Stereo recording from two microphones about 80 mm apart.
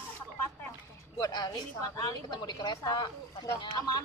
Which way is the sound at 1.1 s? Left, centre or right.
Left.